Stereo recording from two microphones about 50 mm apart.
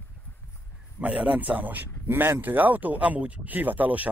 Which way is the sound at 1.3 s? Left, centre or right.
Right.